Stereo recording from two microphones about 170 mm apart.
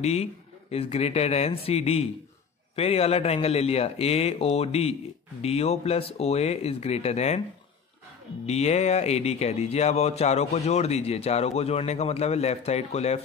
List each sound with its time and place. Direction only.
0.0 s speech: 40° left (ahead or behind)
8.5 s speech: 40° left (ahead or behind)